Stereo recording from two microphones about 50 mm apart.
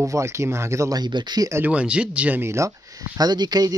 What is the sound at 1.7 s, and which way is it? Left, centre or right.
Speech, right.